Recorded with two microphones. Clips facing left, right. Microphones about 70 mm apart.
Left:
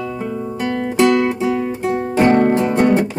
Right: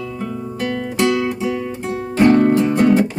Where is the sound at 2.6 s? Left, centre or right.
Centre.